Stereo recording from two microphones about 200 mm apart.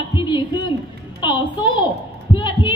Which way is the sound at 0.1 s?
25° left (ahead or behind).